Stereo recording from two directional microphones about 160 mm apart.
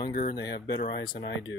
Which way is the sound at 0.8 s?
65° left (ahead or behind).